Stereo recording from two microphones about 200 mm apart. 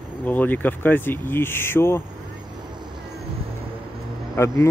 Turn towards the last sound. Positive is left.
turn(degrees=15)  # may be behind; listen again after turning